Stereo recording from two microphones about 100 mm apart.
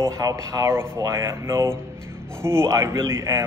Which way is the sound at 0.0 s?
35° right (ahead or behind).